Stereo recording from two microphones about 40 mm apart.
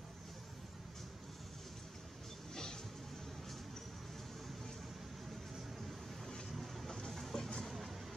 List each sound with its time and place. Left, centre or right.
2.5 s a sound: centre
6.5 s vehicle: centre
7.3 s vehicle: centre